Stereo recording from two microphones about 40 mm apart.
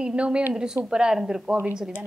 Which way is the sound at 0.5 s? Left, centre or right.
Centre.